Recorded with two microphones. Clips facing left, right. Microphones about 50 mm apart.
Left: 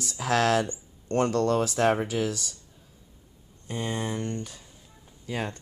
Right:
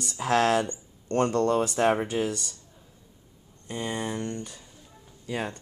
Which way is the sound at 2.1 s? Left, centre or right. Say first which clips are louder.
Even; right.